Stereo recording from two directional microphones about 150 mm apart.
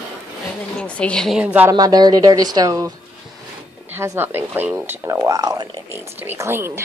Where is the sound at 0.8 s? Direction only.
10° left (ahead or behind).